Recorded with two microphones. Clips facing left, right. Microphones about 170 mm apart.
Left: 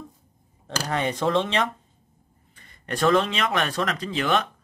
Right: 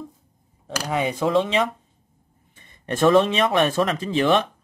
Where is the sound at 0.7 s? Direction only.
5° right (ahead or behind).